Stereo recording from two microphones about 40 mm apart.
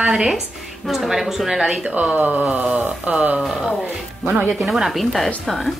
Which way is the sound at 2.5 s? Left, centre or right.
Right.